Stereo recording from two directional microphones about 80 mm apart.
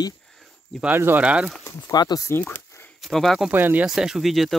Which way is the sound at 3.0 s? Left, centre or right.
Centre.